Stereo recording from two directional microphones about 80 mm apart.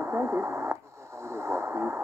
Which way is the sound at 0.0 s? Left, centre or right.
Right.